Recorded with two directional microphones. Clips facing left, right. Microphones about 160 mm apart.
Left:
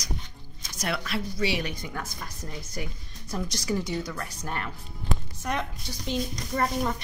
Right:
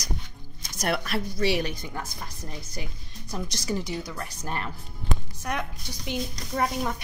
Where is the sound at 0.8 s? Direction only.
45° right (ahead or behind).